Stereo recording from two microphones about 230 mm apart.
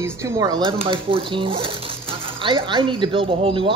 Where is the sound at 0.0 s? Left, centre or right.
Centre.